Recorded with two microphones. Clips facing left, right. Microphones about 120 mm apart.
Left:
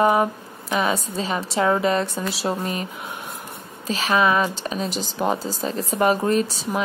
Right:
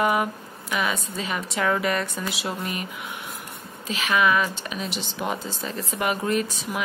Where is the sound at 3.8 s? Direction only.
35° left (ahead or behind).